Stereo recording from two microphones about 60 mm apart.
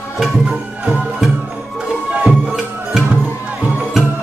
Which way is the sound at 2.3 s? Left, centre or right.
Centre.